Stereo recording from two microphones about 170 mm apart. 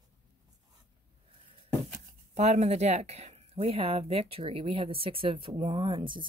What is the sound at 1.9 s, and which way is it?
Speech, 40° right (ahead or behind).